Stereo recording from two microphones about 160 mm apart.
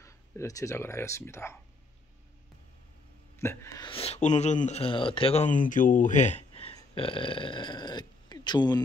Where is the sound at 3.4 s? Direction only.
15° left (ahead or behind).